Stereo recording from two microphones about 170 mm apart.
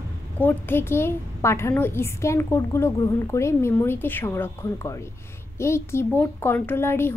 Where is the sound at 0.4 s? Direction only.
10° left (ahead or behind).